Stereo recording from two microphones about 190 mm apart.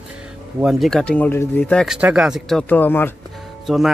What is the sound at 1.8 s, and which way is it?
Speech, 5° right (ahead or behind).